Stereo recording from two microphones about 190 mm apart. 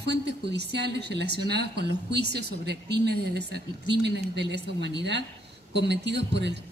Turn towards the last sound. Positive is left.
turn(degrees=-65)  # may be behind; listen again after turning